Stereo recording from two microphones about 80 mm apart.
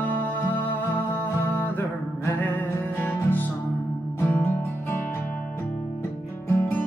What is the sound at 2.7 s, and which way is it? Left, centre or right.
Music, left.